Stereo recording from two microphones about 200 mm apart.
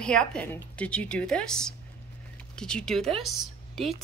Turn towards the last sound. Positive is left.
turn(degrees=0)  # may be behind; listen again after turning